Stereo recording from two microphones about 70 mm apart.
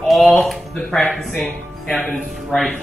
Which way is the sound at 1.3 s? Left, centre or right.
Left.